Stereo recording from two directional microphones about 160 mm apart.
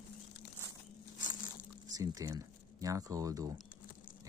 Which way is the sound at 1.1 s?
55° left (ahead or behind).